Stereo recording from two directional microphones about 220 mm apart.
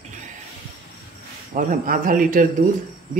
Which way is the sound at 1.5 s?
35° right (ahead or behind).